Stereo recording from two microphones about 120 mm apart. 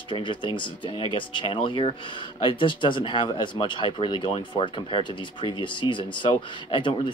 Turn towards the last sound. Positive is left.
turn(degrees=40)  # may be behind; listen again after turning